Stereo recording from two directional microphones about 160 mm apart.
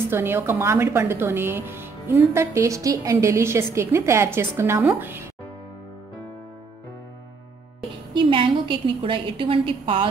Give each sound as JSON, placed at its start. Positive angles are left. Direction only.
{"t": 0.1, "sound": "a woman's voice", "side_deg": -15}
{"t": 8.1, "sound": "a woman's voice", "side_deg": -30}